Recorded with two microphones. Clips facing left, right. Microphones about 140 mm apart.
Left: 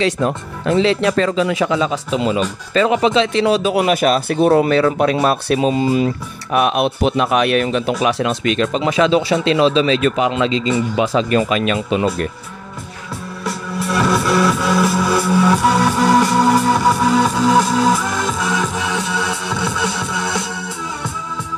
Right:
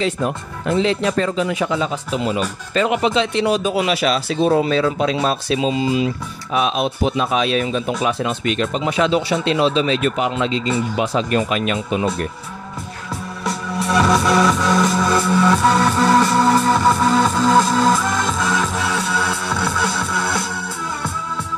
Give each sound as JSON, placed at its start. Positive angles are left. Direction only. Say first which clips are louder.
{"t": 0.0, "sound": "speech", "louder": "left 3 dB", "side_deg": 90}
{"t": 3.8, "sound": "speech", "louder": "left 4 dB", "side_deg": 50}
{"t": 13.4, "sound": "music", "louder": "even", "side_deg": 5}